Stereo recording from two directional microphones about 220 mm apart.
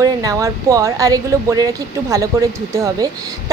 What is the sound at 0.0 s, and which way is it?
A woman's voice, 15° right (ahead or behind).